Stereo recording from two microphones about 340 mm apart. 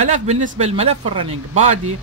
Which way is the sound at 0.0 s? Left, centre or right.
Right.